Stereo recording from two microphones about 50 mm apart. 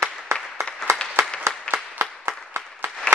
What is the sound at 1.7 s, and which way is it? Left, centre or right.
Applause, right.